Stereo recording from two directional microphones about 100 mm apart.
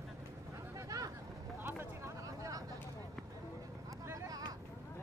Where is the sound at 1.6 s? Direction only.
30° right (ahead or behind).